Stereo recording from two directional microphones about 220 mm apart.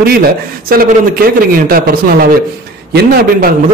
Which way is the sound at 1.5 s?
40° right (ahead or behind).